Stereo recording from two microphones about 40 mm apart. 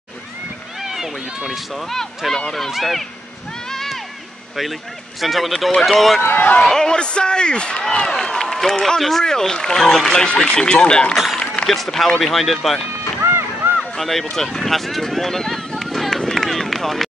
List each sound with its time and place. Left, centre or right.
0.7 s run: centre
1.5 s speech: centre
2.0 s speech: centre
3.6 s a sound: centre
5.2 s a man's voice: centre; by 8.1 s left
8.1 s speech: centre
10.3 s a man's voice: left
11.6 s speech: centre
13.2 s boat: right
13.7 s speech: centre
15.8 s run: centre